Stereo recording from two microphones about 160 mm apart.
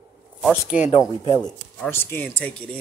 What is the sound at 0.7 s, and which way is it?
Speech, 55° left (ahead or behind).